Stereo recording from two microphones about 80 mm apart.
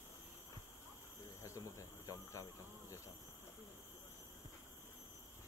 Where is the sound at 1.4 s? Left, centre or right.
Left.